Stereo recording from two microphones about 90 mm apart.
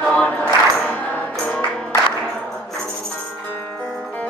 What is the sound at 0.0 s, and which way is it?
Music, 15° left (ahead or behind).